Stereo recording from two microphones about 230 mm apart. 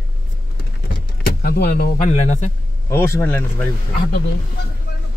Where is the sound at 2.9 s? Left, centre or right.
Centre.